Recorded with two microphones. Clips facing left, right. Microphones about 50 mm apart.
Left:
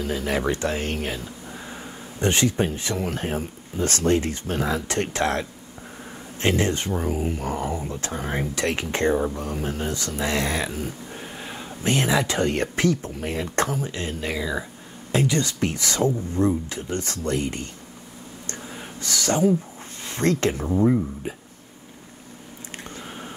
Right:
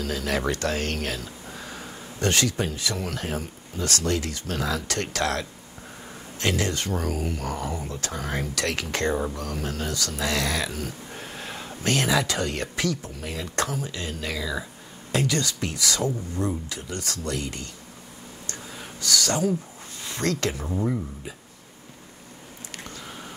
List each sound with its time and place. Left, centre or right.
0.0 s speech: left
11.1 s a sound: centre
11.8 s speech: left
18.6 s writing: left
20.1 s speech: left
20.6 s speech: centre
22.8 s squish: left